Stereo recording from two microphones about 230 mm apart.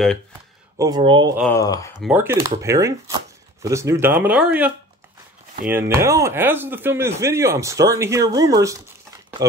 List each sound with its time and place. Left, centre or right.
0.7 s speech: centre
1.5 s speech: centre
2.0 s speech: centre